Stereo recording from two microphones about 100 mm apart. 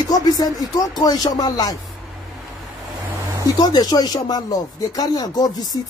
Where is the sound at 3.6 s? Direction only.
40° left (ahead or behind).